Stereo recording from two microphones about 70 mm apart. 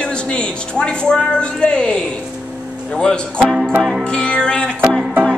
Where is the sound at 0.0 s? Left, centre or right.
Centre.